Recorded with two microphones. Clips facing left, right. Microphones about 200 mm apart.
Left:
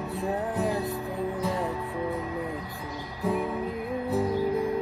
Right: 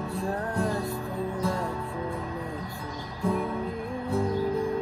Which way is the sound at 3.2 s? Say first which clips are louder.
Even; 5° left (ahead or behind).